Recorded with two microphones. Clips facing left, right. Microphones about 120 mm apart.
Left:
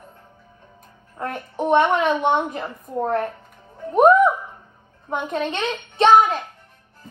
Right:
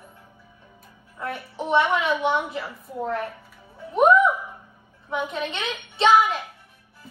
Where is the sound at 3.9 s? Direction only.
50° left (ahead or behind).